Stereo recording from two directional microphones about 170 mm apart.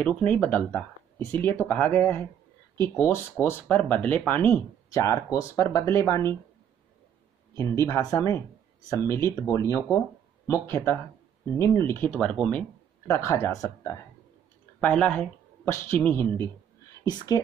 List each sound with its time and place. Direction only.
0.0 s speech: 10° left (ahead or behind)
7.5 s speech: 15° left (ahead or behind)
17.0 s speech: 20° left (ahead or behind)